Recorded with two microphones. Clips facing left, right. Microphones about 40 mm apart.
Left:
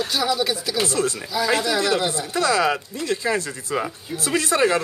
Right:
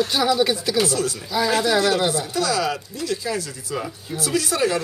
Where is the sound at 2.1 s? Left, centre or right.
Left.